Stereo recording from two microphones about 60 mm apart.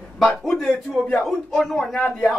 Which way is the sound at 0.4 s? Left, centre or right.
Centre.